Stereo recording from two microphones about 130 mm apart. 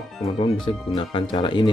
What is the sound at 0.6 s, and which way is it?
Speech, 35° left (ahead or behind).